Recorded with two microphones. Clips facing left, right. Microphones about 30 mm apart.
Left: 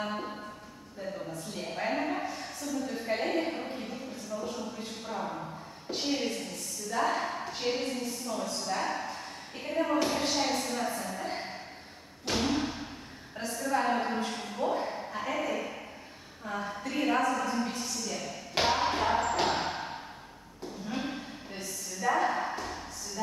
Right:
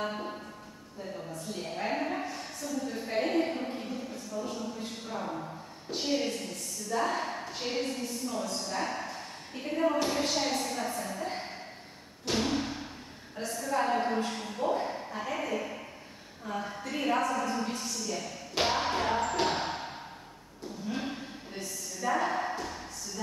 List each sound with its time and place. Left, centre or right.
0.0 s music: centre
1.5 s a sound: centre
8.6 s a woman's voice: centre
12.3 s music: centre
13.4 s a woman's voice: centre
18.6 s music: centre
20.9 s a sound: centre